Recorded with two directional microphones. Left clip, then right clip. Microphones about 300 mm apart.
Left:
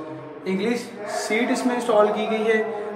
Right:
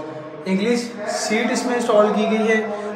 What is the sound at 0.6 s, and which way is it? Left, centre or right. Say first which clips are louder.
A man's voice: right 6 dB; centre.